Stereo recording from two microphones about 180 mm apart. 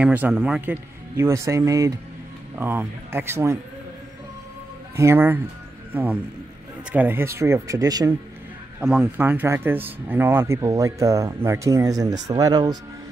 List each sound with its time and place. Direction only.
0.0 s speech: 10° right (ahead or behind)
4.9 s speech: 15° right (ahead or behind)
6.9 s speech: 10° right (ahead or behind)
8.8 s speech: 10° right (ahead or behind)